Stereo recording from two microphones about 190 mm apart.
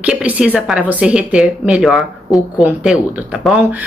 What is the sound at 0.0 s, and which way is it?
A woman's voice, 5° right (ahead or behind).